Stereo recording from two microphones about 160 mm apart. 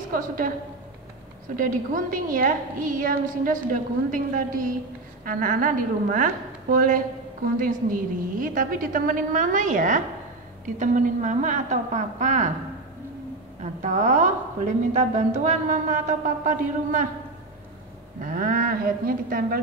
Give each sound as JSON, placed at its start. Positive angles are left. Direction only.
{"t": 0.1, "sound": "a woman's voice", "side_deg": -60}
{"t": 1.6, "sound": "a woman's voice", "side_deg": -55}
{"t": 13.6, "sound": "a man's voice", "side_deg": -50}
{"t": 18.2, "sound": "a woman's voice", "side_deg": -60}